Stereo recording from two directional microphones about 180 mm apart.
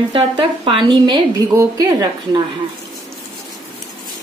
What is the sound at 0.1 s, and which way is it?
A woman's voice, 30° right (ahead or behind).